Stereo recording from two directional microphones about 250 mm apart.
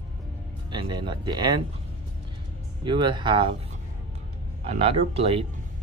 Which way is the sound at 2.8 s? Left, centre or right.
Centre.